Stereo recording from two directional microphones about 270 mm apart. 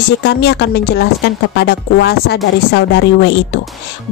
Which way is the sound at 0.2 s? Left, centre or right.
Left.